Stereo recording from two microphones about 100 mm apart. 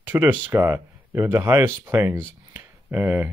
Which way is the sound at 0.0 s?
20° right (ahead or behind).